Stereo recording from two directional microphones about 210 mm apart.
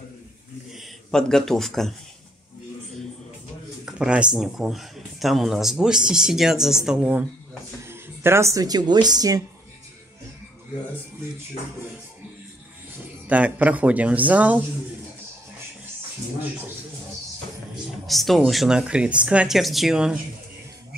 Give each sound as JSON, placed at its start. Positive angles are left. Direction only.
{"t": 0.7, "sound": "speech", "side_deg": 0}
{"t": 3.8, "sound": "speech", "side_deg": -5}
{"t": 13.3, "sound": "a man's voice", "side_deg": -5}
{"t": 18.0, "sound": "speech", "side_deg": 0}